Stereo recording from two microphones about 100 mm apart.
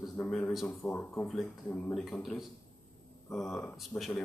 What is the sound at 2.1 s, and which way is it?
Speech, 30° left (ahead or behind).